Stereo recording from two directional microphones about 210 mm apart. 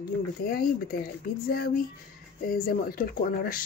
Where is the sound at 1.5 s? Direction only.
45° left (ahead or behind).